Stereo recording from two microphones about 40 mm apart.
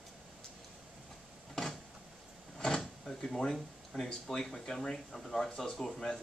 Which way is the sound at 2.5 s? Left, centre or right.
Centre.